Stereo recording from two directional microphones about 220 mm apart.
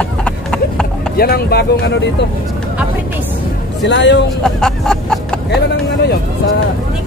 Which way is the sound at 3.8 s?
50° left (ahead or behind).